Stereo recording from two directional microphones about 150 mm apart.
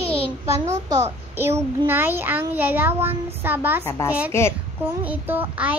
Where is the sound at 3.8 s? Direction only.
20° left (ahead or behind).